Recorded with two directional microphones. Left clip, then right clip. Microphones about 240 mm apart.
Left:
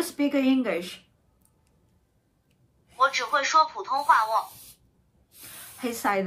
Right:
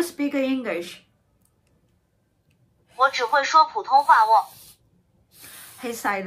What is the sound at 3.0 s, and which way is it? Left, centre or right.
A man's voice, centre.